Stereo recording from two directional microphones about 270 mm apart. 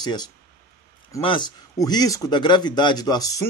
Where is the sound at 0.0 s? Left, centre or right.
Centre.